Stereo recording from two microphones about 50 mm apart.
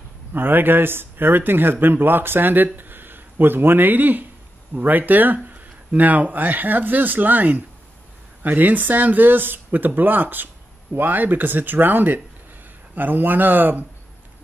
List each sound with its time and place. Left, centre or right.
0.3 s speech: right